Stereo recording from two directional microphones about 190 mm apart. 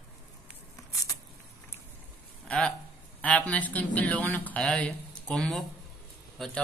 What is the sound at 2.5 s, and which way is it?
A man's voice, 5° left (ahead or behind).